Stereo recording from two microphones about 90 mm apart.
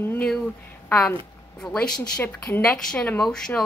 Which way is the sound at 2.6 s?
10° left (ahead or behind).